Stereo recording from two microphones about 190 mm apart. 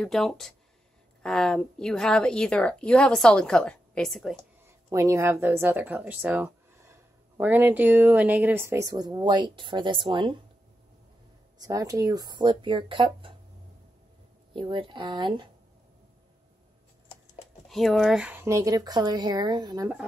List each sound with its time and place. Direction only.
0.0 s a woman's voice: centre (ahead or behind)
4.8 s speech: 15° right (ahead or behind)
11.5 s speech: 20° right (ahead or behind)
14.5 s speech: 25° right (ahead or behind)
17.6 s speech: centre (ahead or behind); by 19.9 s 20° right (ahead or behind)